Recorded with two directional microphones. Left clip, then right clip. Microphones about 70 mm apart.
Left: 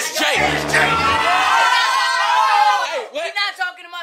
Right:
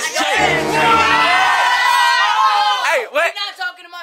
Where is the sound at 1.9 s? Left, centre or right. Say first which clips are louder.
Right 4 dB; right.